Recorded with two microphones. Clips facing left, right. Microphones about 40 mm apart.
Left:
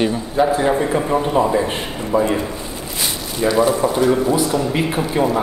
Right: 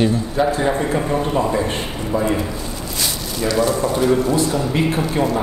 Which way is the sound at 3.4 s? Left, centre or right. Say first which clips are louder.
Left 3 dB; centre.